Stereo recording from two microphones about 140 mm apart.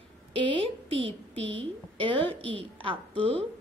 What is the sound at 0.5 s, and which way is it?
A woman's voice, 40° right (ahead or behind).